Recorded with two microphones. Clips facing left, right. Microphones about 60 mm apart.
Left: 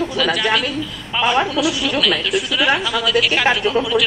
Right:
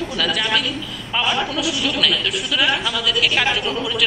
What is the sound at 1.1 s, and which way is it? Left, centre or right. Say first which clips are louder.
A woman's voice: left 4 dB; centre.